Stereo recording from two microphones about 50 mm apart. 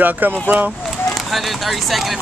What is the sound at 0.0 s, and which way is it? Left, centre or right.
Speech, right.